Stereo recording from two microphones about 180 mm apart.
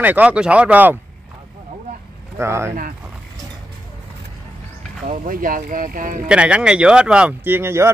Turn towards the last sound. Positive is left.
turn(degrees=-15)  # may be behind; listen again after turning